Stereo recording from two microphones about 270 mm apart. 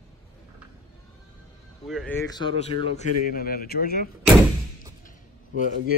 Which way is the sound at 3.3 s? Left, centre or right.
Left.